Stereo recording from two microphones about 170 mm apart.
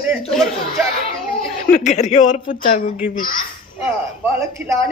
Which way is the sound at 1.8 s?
45° left (ahead or behind).